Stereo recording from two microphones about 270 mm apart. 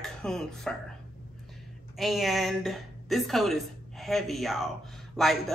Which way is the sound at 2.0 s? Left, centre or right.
Centre.